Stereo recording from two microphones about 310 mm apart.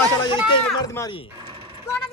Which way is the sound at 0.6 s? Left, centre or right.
Centre.